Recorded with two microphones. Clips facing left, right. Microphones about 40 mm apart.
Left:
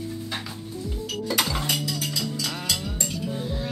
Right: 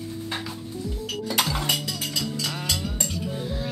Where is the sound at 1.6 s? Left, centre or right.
Right.